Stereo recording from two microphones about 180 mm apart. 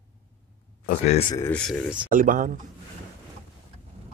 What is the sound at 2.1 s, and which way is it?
Speech, 45° right (ahead or behind).